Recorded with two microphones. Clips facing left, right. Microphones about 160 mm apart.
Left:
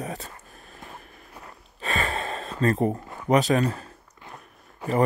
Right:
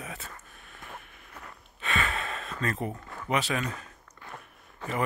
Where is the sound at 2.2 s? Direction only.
30° left (ahead or behind).